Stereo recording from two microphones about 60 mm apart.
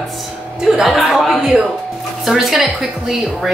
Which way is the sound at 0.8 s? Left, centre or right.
Centre.